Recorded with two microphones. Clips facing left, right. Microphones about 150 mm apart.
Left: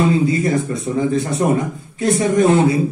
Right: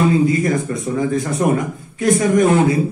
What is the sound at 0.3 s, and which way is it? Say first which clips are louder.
A man's voice: even; 30° left (ahead or behind).